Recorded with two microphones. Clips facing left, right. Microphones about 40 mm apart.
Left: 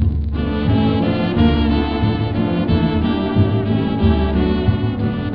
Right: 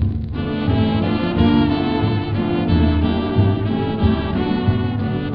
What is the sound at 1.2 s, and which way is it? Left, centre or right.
Music, left.